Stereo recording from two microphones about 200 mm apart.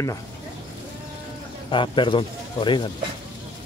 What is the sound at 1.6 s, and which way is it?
Speech, 25° left (ahead or behind).